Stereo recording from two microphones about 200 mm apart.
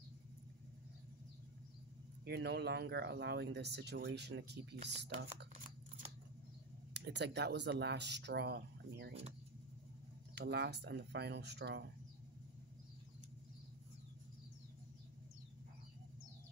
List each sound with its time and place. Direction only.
2.2 s speech: 55° right (ahead or behind)
6.9 s speech: 60° right (ahead or behind)
10.3 s speech: 55° right (ahead or behind)